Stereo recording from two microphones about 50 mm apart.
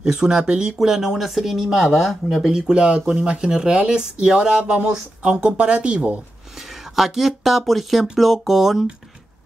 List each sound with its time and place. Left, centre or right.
0.0 s speech: centre
2.7 s speech: centre
6.6 s speech: centre